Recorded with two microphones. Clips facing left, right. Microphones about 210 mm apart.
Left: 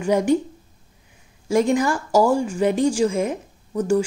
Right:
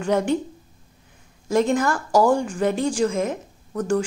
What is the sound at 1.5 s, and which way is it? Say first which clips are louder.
A woman's voice: left 1 dB; 10° left (ahead or behind).